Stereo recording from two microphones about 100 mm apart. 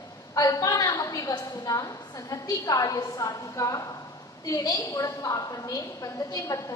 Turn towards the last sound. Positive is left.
turn(degrees=35)  # may be behind; listen again after turning